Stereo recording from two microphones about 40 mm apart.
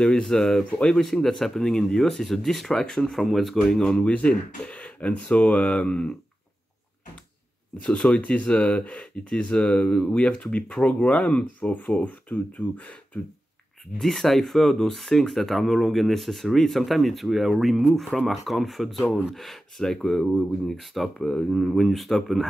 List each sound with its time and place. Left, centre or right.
0.0 s speech: centre
4.0 s speech: left
4.3 s speech: left
7.8 s speech: left
13.9 s speech: centre
20.7 s speech: centre
21.2 s speech: centre